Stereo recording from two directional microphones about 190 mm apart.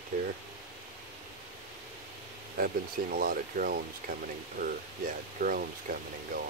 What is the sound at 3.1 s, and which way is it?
Speech, 50° right (ahead or behind).